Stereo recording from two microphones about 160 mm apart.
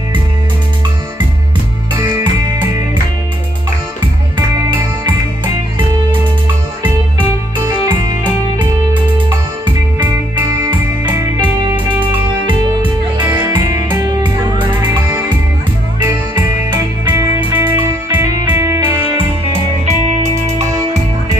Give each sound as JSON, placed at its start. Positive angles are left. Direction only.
{"t": 6.8, "sound": "music", "side_deg": -30}
{"t": 10.7, "sound": "music", "side_deg": -25}
{"t": 13.5, "sound": "music", "side_deg": -25}
{"t": 16.0, "sound": "music", "side_deg": -25}
{"t": 17.4, "sound": "music", "side_deg": -10}
{"t": 17.7, "sound": "music", "side_deg": -25}
{"t": 19.0, "sound": "music", "side_deg": -35}